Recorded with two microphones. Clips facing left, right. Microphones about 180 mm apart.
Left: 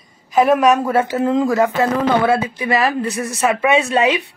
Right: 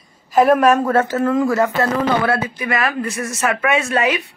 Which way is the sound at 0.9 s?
15° left (ahead or behind).